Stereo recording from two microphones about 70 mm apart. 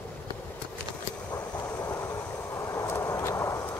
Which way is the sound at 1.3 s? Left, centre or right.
Left.